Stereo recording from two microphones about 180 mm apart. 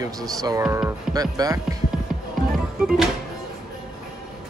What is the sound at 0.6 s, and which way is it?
Speech, 5° right (ahead or behind).